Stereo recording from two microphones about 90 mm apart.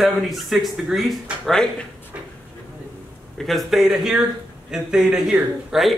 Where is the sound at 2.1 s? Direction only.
15° right (ahead or behind).